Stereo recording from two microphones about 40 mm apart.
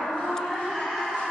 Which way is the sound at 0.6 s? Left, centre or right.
Centre.